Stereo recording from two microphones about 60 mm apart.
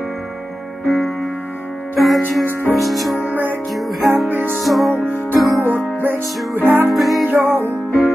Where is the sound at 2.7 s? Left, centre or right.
Centre.